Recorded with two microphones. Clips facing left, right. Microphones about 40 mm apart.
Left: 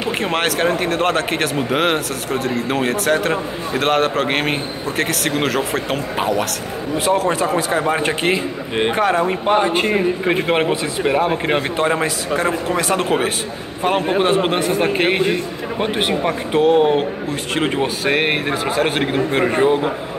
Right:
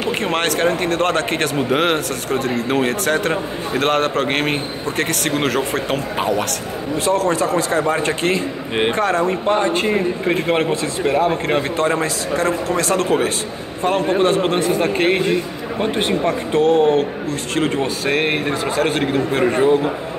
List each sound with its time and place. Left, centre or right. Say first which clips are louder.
0.2 s a man's voice: even; centre; by 19.9 s left